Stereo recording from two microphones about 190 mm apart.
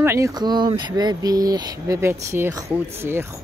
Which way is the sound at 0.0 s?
15° right (ahead or behind).